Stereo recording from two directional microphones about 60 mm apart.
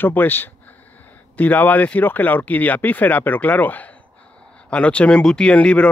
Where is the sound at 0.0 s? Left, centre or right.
Left.